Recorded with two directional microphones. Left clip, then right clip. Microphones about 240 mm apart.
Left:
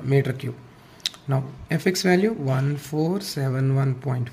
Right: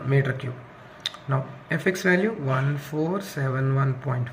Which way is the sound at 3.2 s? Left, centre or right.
Left.